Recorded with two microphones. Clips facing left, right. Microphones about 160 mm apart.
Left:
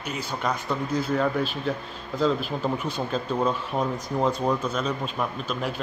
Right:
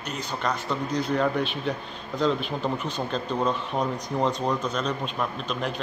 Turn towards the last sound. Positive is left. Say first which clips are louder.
# even
turn(degrees=5)  # may be behind; listen again after turning